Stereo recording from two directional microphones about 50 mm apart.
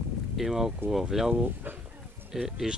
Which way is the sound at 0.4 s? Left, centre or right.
Centre.